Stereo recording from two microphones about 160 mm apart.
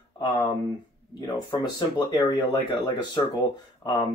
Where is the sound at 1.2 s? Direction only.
25° left (ahead or behind).